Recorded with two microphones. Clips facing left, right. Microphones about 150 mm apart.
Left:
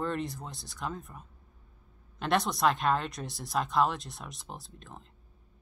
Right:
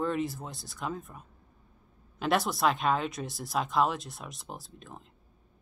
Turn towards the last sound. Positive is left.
turn(degrees=-5)  # may be behind; listen again after turning